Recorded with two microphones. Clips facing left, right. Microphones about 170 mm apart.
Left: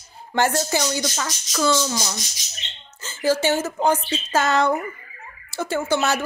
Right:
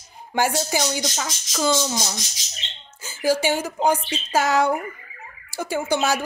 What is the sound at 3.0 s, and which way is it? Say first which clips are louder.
Speech: left 1 dB; 10° right (ahead or behind).